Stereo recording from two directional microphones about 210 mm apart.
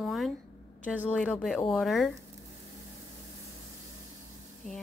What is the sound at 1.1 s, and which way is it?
Speech, 5° left (ahead or behind).